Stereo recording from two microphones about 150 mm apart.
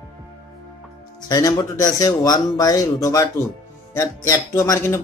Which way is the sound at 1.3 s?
25° left (ahead or behind).